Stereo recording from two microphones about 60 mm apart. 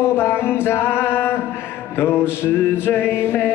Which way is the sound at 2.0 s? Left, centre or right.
Left.